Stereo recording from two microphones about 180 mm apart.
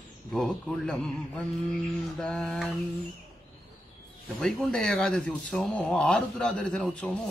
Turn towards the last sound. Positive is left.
turn(degrees=5)  # may be behind; listen again after turning